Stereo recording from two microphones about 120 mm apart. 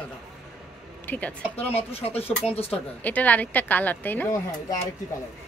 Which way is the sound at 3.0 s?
15° left (ahead or behind).